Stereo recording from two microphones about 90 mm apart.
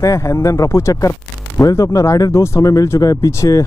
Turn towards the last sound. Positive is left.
turn(degrees=35)  # may be behind; listen again after turning